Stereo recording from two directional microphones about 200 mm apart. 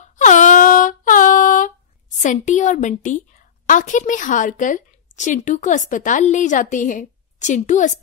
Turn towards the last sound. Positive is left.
turn(degrees=35)  # may be behind; listen again after turning